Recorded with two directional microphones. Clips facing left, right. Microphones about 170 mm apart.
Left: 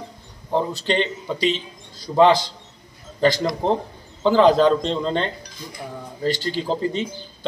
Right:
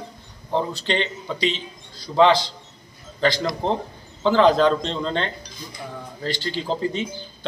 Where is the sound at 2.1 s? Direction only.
15° left (ahead or behind).